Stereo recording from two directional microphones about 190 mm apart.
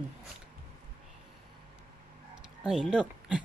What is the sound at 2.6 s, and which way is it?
Speech, 5° right (ahead or behind).